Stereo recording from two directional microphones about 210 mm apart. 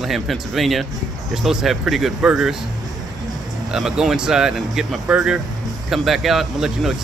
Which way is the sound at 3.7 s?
5° right (ahead or behind).